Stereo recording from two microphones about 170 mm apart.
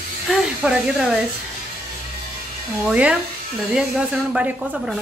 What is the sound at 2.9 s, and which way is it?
A woman's voice, 5° right (ahead or behind).